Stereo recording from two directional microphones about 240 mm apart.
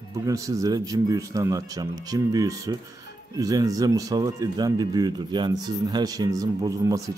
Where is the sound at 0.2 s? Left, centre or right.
Centre.